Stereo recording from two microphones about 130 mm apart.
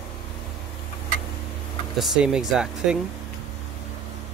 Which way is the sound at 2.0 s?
5° right (ahead or behind).